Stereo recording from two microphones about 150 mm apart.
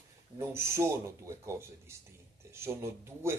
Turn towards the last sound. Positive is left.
turn(degrees=-15)  # may be behind; listen again after turning